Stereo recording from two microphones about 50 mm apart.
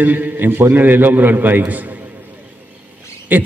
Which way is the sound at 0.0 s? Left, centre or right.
Right.